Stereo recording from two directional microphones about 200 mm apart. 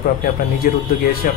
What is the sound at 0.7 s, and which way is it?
Speech, 45° left (ahead or behind).